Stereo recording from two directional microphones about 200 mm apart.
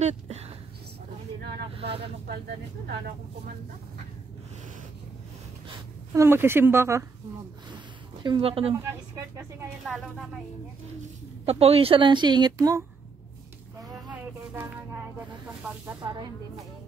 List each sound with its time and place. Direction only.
0.0 s a sound: 30° right (ahead or behind)
6.1 s speech: 10° right (ahead or behind)
8.2 s a woman's voice: 25° right (ahead or behind)
8.7 s speech: 15° right (ahead or behind)
9.8 s speech: centre (ahead or behind)
11.4 s a woman's voice: 30° right (ahead or behind)
14.1 s a sound: 10° right (ahead or behind)
16.0 s a woman's voice: 20° right (ahead or behind)